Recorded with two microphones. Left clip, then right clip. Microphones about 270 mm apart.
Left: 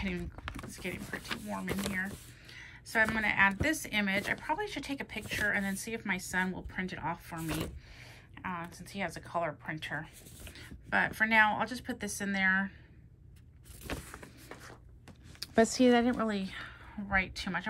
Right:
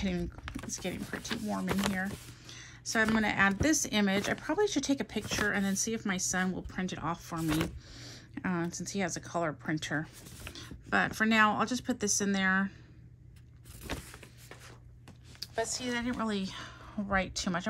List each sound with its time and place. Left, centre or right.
0.7 s speech: centre
1.0 s speech: centre
2.4 s a sound: centre
3.2 s speech: centre
5.2 s speech: centre
5.5 s speech: centre
7.3 s speech: centre
8.0 s speech: centre
14.1 s a sound: centre
15.4 s speech: left
16.1 s speech: centre